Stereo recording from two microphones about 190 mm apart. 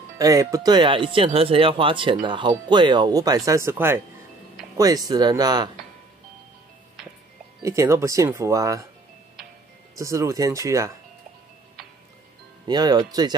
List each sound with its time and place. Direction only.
0.2 s speech: 20° right (ahead or behind)
7.6 s speech: 15° right (ahead or behind)
9.9 s speech: 15° right (ahead or behind)
12.6 s speech: 20° right (ahead or behind)